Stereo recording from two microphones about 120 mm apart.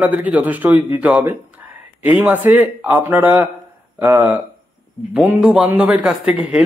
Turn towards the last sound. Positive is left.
turn(degrees=-10)  # may be behind; listen again after turning